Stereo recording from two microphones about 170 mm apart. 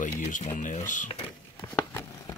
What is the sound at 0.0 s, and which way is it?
Speech, 45° left (ahead or behind).